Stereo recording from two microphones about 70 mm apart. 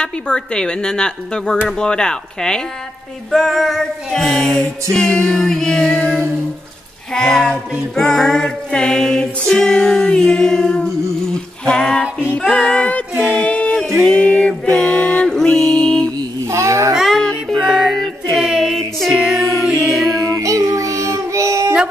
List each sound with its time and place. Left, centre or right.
0.0 s a woman's voice: centre
3.3 s female singing: centre
4.9 s a woman's voice: centre
13.3 s a sound: centre
14.0 s a woman's voice: centre
15.5 s music: centre
16.4 s a sound: right
16.9 s music: centre
17.2 s music: centre
17.6 s music: centre
18.3 s a sound: centre
18.8 s music: centre
20.2 s music: right